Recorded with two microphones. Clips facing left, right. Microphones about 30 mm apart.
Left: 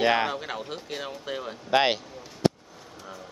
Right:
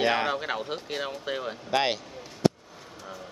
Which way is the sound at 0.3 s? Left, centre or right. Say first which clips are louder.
Right 3 dB; centre.